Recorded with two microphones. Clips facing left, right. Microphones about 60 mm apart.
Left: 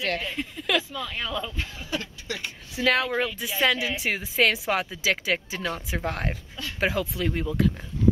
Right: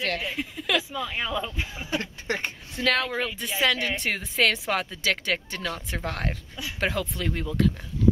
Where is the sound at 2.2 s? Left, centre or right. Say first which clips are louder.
Right 4 dB; right.